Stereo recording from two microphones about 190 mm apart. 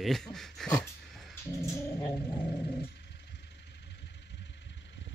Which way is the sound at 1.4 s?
15° left (ahead or behind).